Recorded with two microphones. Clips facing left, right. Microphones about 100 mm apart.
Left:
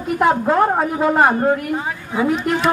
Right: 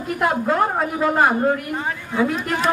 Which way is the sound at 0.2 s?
30° left (ahead or behind).